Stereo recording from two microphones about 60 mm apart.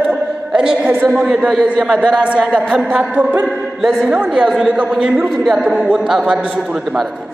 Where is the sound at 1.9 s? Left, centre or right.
Centre.